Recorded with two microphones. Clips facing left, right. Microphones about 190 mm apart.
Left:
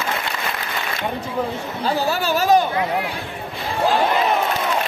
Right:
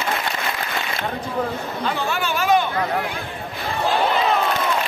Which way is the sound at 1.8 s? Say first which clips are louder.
Left 4 dB; 35° left (ahead or behind).